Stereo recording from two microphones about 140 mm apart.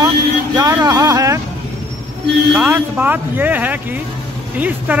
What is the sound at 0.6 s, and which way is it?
Vehicle, 25° right (ahead or behind).